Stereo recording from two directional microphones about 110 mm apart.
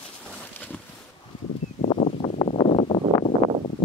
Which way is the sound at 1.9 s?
75° left (ahead or behind).